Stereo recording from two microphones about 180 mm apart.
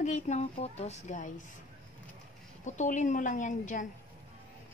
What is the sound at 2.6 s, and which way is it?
Speech, 40° left (ahead or behind).